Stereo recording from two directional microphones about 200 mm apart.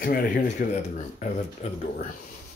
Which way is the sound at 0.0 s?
45° left (ahead or behind).